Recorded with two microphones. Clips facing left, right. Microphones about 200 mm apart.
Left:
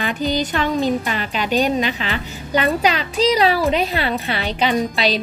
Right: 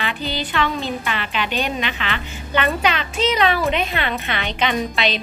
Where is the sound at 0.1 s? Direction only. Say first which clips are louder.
Left 5 dB; 45° left (ahead or behind).